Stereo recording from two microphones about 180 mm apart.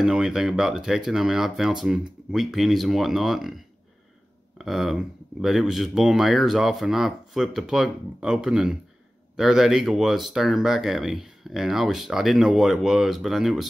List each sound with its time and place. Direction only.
0.0 s speech: 5° right (ahead or behind)
4.6 s speech: centre (ahead or behind)